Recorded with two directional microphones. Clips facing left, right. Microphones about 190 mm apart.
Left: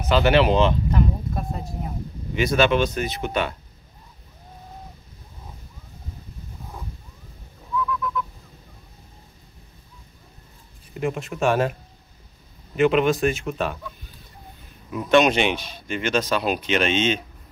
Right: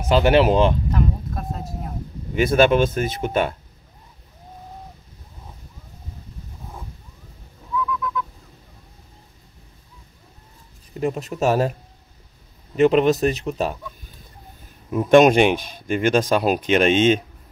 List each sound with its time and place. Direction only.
0.1 s speech: 45° right (ahead or behind)
0.9 s a sound: centre (ahead or behind)
2.3 s speech: 50° right (ahead or behind)
7.7 s bird: centre (ahead or behind)
11.0 s speech: 40° right (ahead or behind)
12.7 s speech: 40° right (ahead or behind)
14.9 s speech: 45° right (ahead or behind)